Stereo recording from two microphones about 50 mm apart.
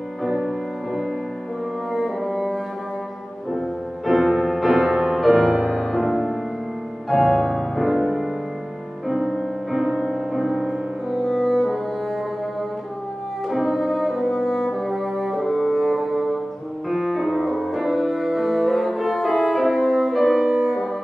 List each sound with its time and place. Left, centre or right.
0.2 s music: centre
1.9 s music: centre
9.3 s music: centre
11.2 s music: centre
13.5 s french horn: centre
16.9 s music: centre